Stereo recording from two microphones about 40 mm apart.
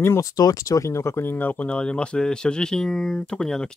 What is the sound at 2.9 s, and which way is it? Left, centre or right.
Speech, centre.